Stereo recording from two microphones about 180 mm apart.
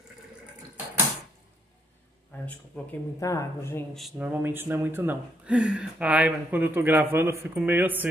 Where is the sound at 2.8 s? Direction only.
5° left (ahead or behind).